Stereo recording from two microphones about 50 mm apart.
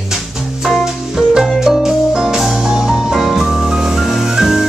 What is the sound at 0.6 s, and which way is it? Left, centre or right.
Music, centre.